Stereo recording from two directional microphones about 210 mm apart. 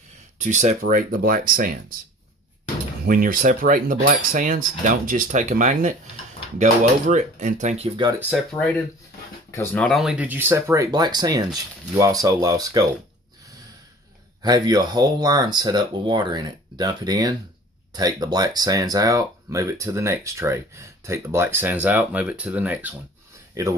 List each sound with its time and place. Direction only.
0.4 s speech: 35° right (ahead or behind)
3.1 s speech: 40° right (ahead or behind); by 8.2 s 25° right (ahead or behind)
9.5 s speech: 10° left (ahead or behind)
9.8 s speech: centre (ahead or behind); by 12.8 s 15° right (ahead or behind)
14.4 s speech: 20° right (ahead or behind)